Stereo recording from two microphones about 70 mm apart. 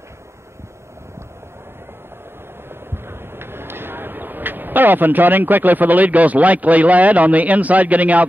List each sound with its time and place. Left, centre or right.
2.9 s speech: right